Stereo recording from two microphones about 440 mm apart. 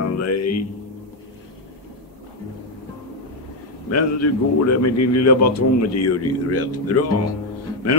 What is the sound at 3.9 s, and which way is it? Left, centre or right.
Speech, left.